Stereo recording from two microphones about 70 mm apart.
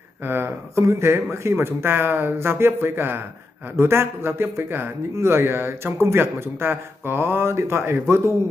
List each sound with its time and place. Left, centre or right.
0.2 s speech: right